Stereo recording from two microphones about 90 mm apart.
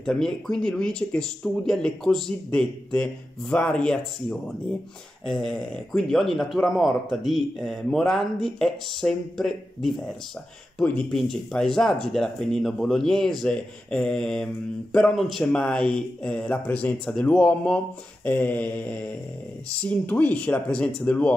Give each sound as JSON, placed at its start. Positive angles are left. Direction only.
{"t": 0.0, "sound": "speech", "side_deg": 5}
{"t": 11.1, "sound": "speech", "side_deg": 5}
{"t": 18.2, "sound": "mantra", "side_deg": 20}
{"t": 19.8, "sound": "speech", "side_deg": 15}